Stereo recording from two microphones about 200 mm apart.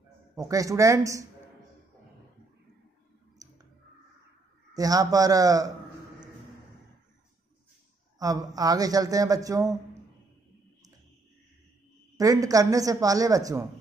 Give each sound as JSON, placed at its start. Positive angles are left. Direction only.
{"t": 0.4, "sound": "a man's voice", "side_deg": -15}
{"t": 3.4, "sound": "a sound", "side_deg": -15}
{"t": 4.7, "sound": "a man's voice", "side_deg": -20}
{"t": 8.2, "sound": "a man's voice", "side_deg": -20}
{"t": 12.2, "sound": "a man's voice", "side_deg": -15}